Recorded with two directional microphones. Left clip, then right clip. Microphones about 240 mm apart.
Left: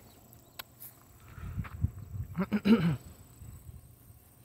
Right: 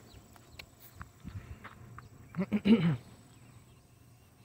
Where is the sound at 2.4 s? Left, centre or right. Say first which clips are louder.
Left 1 dB; centre.